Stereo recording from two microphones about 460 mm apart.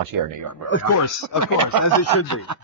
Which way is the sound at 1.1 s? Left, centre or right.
Right.